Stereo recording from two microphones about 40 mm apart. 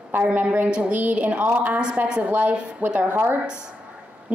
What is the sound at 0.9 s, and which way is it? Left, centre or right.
A woman's voice, right.